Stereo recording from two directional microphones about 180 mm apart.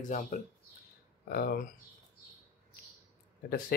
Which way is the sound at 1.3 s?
55° left (ahead or behind).